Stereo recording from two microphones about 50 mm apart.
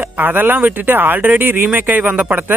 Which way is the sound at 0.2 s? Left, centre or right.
Right.